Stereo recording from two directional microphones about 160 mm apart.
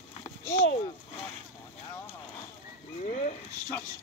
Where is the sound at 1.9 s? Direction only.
15° left (ahead or behind).